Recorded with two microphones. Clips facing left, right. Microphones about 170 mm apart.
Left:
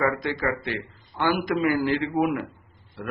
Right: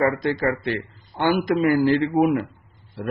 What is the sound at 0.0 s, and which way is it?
Speech, 35° right (ahead or behind).